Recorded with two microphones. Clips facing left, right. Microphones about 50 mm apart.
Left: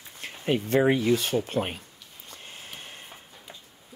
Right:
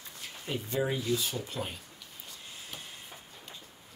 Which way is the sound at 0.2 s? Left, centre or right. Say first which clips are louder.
Left 10 dB; left.